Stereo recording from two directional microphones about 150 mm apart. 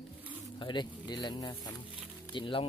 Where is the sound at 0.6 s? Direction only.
30° left (ahead or behind).